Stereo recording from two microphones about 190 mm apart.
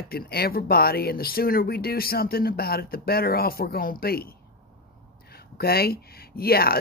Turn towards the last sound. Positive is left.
turn(degrees=55)  # may be behind; listen again after turning